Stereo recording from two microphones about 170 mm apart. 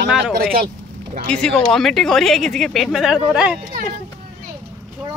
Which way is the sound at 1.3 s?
5° left (ahead or behind).